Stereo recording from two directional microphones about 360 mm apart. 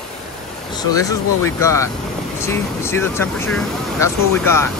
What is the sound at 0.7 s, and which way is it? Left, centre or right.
Speech, centre.